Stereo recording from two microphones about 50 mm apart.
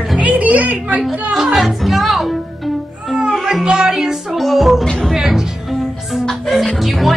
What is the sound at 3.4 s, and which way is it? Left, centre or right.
Music, centre.